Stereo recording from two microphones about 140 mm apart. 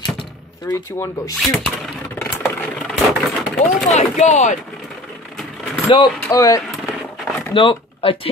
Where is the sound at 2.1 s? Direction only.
15° left (ahead or behind).